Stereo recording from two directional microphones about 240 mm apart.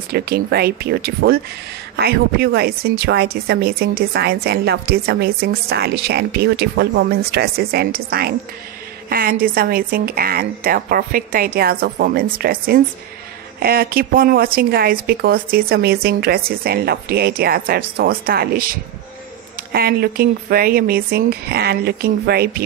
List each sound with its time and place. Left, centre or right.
0.1 s speech: right